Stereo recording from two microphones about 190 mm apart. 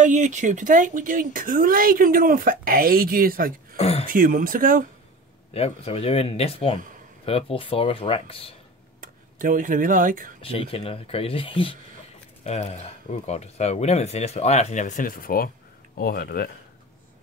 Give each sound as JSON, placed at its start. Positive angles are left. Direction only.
{"t": 0.0, "sound": "speech", "side_deg": -40}
{"t": 3.7, "sound": "a sound", "side_deg": 35}
{"t": 4.1, "sound": "speech", "side_deg": -45}
{"t": 5.5, "sound": "speech", "side_deg": 30}
{"t": 9.0, "sound": "speech", "side_deg": -45}
{"t": 10.4, "sound": "speech", "side_deg": 30}